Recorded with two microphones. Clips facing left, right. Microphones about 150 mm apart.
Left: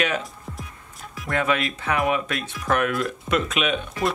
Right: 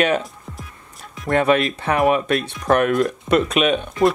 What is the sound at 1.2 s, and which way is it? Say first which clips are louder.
Speech: right 7 dB; 35° right (ahead or behind).